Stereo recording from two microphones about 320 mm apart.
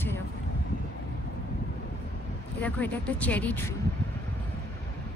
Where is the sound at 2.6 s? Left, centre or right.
Centre.